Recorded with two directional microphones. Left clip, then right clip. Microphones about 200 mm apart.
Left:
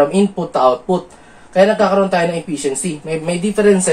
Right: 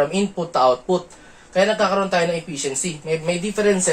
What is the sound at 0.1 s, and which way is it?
Speech, 30° right (ahead or behind).